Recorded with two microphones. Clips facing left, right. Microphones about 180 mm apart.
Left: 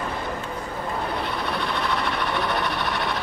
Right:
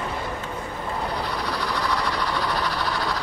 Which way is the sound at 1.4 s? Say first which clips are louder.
Even; 25° left (ahead or behind).